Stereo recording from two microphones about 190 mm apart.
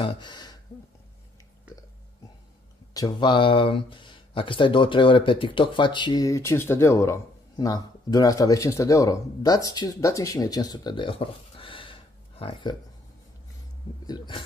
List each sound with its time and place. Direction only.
0.0 s speech: 25° left (ahead or behind)
2.9 s speech: 20° left (ahead or behind)
14.0 s speech: 25° left (ahead or behind)